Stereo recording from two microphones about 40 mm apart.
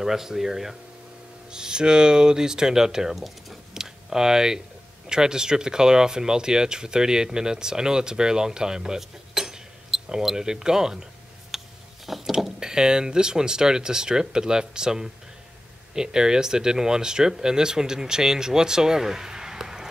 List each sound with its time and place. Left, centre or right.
0.0 s speech: centre
1.5 s speech: centre
3.7 s a sound: centre
5.0 s speech: centre
11.5 s a sound: centre
12.3 s speech: centre